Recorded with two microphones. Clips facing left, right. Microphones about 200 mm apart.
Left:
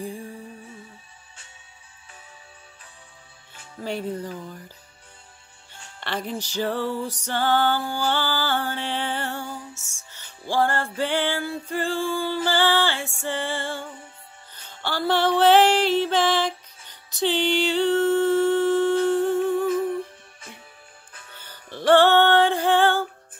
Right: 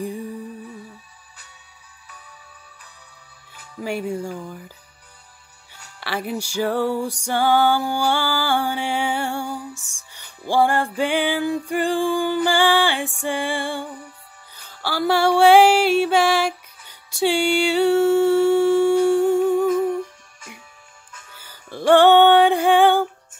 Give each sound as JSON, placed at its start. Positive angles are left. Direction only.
{"t": 3.8, "sound": "music", "side_deg": -10}
{"t": 5.9, "sound": "music", "side_deg": -10}
{"t": 19.7, "sound": "music", "side_deg": 30}
{"t": 21.4, "sound": "music", "side_deg": -10}